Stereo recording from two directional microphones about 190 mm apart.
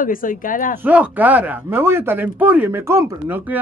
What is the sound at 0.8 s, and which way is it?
Speech, 10° right (ahead or behind).